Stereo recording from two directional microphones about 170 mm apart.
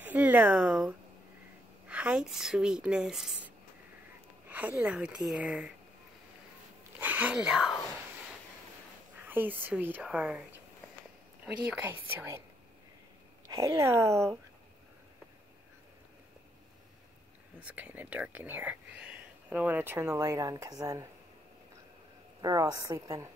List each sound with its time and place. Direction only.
0.0 s speech: 10° right (ahead or behind)
7.0 s a sound: 10° right (ahead or behind)
9.2 s speech: 10° right (ahead or behind)
11.4 s speech: 5° right (ahead or behind)
13.5 s speech: 20° right (ahead or behind)
17.6 s speech: 10° right (ahead or behind)
22.4 s a woman's voice: 20° right (ahead or behind)